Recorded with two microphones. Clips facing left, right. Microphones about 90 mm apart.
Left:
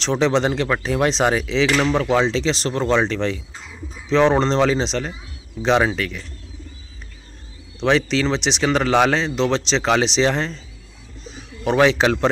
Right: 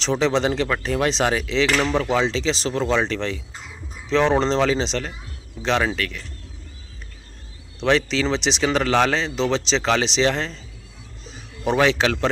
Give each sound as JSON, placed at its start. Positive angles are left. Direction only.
{"t": 0.0, "sound": "speech", "side_deg": 0}
{"t": 5.6, "sound": "speech", "side_deg": 10}
{"t": 7.8, "sound": "speech", "side_deg": 0}
{"t": 11.6, "sound": "speech", "side_deg": 0}